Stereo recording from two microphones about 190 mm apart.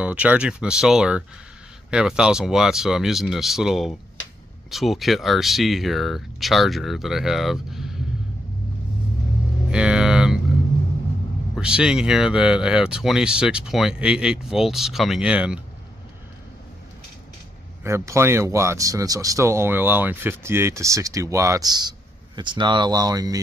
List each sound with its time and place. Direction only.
0.0 s speech: 5° right (ahead or behind)
9.7 s a sound: 5° right (ahead or behind)
11.5 s speech: 5° right (ahead or behind)
17.8 s speech: 15° right (ahead or behind)